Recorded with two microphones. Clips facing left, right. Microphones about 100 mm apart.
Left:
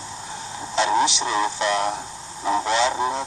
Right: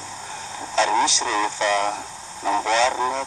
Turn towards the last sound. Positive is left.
turn(degrees=15)  # may be behind; listen again after turning